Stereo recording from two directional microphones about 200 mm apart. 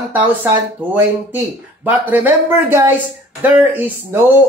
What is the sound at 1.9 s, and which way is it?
Speech, 10° right (ahead or behind).